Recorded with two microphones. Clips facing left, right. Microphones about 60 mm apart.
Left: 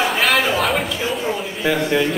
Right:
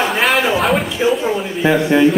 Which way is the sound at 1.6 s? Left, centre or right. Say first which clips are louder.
Right 6 dB; right.